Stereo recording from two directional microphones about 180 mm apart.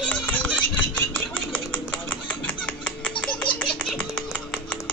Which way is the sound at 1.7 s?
10° left (ahead or behind).